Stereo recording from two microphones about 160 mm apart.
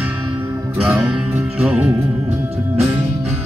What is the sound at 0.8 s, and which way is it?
Music, 5° right (ahead or behind).